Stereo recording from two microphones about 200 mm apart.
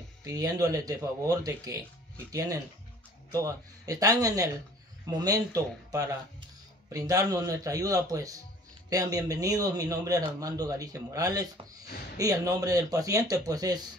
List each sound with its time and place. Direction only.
0.2 s speech: 20° right (ahead or behind)